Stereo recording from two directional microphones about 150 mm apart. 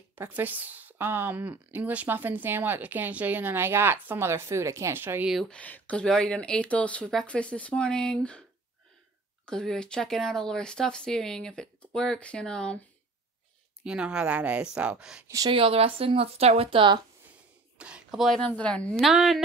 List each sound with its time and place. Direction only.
0.1 s speech: 10° right (ahead or behind)
5.3 s speech: 5° left (ahead or behind)
9.5 s speech: 5° left (ahead or behind)
13.8 s speech: 5° right (ahead or behind)
15.2 s speech: 25° right (ahead or behind)
15.5 s speech: 40° right (ahead or behind)
17.7 s speech: 5° right (ahead or behind)